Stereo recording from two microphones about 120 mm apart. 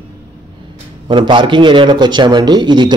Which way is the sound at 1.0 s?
45° right (ahead or behind).